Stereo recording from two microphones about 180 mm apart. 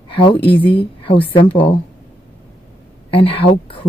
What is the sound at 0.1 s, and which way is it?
A woman's voice, 25° left (ahead or behind).